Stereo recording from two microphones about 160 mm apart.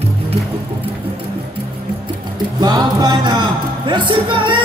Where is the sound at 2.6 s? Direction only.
25° right (ahead or behind).